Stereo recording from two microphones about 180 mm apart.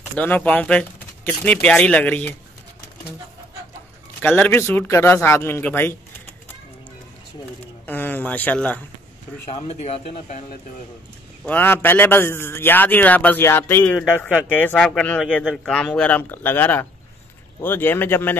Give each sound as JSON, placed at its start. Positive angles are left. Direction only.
{"t": 0.0, "sound": "a man's voice", "side_deg": 10}
{"t": 4.2, "sound": "a man's voice", "side_deg": 10}
{"t": 7.8, "sound": "a man's voice", "side_deg": 10}
{"t": 9.6, "sound": "speech", "side_deg": 35}
{"t": 11.4, "sound": "a man's voice", "side_deg": 10}